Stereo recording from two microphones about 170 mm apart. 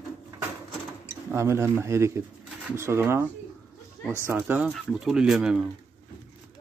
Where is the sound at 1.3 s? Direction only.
15° right (ahead or behind).